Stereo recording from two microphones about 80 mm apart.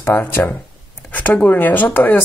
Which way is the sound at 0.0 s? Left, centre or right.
Left.